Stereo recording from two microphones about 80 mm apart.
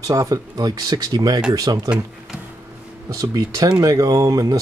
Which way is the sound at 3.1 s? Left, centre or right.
Right.